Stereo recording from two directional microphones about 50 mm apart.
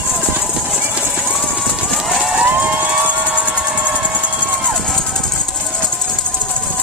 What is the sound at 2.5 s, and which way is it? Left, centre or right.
Emergency vehicle, right.